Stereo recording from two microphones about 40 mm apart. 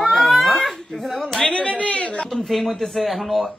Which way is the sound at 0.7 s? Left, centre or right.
Centre.